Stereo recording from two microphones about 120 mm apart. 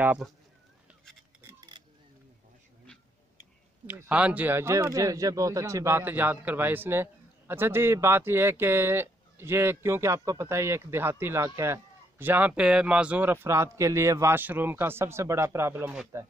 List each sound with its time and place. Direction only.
3.8 s speech: 15° right (ahead or behind)